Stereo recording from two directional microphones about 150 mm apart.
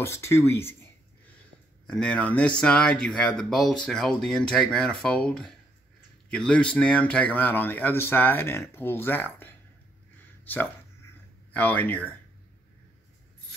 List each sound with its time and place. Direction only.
0.0 s speech: 15° left (ahead or behind)
1.9 s speech: 10° left (ahead or behind)